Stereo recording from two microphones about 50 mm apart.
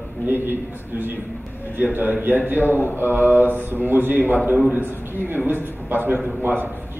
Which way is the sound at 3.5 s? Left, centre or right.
Left.